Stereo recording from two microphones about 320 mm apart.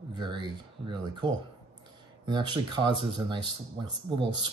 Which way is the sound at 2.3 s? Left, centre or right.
Centre.